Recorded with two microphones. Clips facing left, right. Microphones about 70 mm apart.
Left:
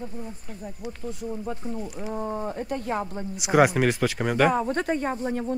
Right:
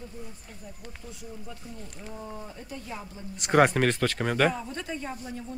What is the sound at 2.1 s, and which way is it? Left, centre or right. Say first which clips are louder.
Speech: left 10 dB; left.